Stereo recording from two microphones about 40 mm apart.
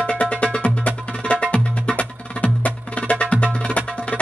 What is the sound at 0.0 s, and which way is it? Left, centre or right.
Music, left.